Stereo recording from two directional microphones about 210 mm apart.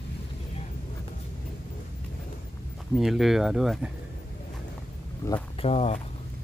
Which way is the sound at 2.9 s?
Centre (ahead or behind).